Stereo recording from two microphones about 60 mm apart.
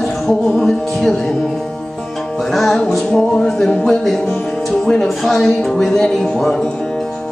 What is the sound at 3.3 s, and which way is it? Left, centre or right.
Speech, centre.